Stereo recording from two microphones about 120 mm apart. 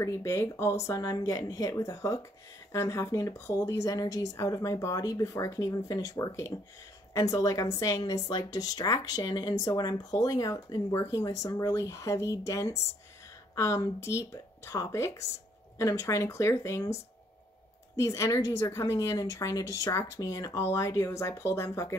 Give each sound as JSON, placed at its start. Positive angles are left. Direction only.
{"t": 0.0, "sound": "a woman's voice", "side_deg": 25}